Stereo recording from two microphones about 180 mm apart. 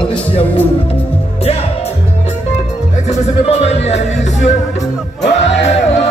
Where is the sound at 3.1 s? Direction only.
35° left (ahead or behind).